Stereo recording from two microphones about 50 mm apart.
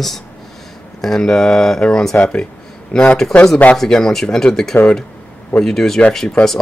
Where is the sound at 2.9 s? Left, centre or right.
Left.